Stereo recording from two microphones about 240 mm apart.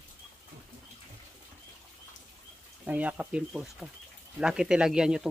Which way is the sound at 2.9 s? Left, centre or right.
Centre.